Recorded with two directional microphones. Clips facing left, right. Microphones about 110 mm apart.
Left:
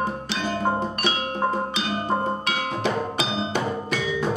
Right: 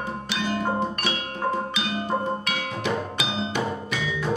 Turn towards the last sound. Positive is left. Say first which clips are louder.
# left 2 dB
turn(degrees=35)  # may be behind; listen again after turning